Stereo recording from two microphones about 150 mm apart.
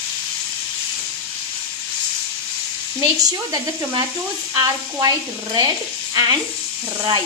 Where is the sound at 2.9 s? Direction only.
25° right (ahead or behind).